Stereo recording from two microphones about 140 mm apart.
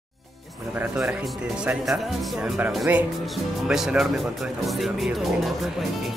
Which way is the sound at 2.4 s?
5° right (ahead or behind).